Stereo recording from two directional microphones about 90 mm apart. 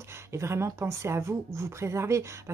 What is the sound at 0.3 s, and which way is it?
Speech, 30° right (ahead or behind).